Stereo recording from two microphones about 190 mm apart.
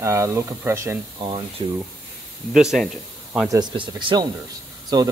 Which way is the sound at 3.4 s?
20° right (ahead or behind).